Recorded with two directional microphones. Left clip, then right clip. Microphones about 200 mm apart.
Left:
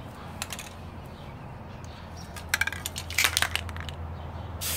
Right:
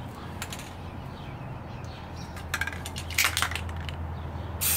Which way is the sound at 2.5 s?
50° left (ahead or behind).